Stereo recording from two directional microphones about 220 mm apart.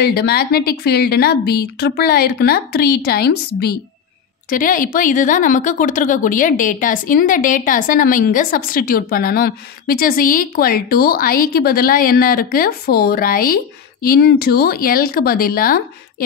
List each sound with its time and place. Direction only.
0.0 s a woman's voice: 45° left (ahead or behind)
4.5 s a woman's voice: 40° left (ahead or behind)